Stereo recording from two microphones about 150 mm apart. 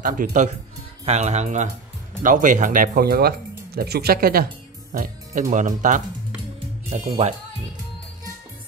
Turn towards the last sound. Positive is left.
turn(degrees=-45)  # may be behind; listen again after turning